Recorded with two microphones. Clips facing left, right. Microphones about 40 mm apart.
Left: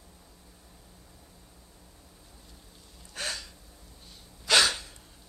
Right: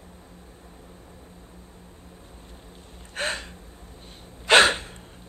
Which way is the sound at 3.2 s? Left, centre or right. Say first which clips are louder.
Right 7 dB; right.